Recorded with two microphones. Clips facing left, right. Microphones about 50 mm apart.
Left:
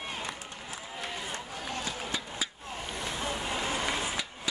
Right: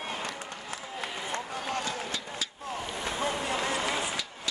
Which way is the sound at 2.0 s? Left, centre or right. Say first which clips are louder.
Even; centre.